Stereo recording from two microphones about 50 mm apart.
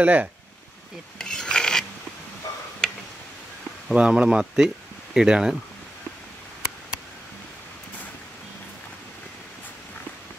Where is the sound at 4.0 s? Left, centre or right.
Centre.